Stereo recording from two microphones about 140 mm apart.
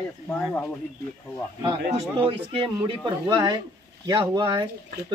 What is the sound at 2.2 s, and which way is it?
Speech, 40° right (ahead or behind).